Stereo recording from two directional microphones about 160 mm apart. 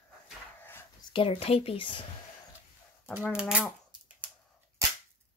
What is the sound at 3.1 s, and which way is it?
Speech, 10° right (ahead or behind).